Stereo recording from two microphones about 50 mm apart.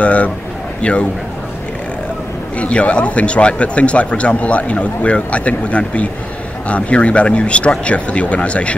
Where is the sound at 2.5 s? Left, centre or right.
Left.